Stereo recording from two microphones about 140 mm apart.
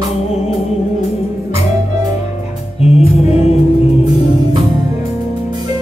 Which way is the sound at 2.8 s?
45° left (ahead or behind).